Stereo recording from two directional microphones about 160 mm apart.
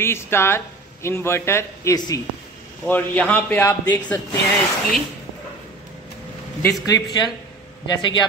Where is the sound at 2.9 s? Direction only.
10° left (ahead or behind).